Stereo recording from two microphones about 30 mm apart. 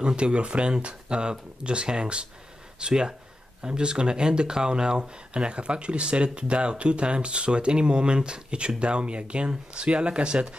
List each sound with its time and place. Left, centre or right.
0.0 s speech: right